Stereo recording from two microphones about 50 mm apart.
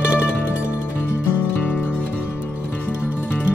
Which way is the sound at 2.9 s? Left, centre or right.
Right.